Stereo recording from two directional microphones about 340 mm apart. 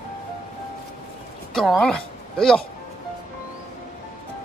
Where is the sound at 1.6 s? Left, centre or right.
Centre.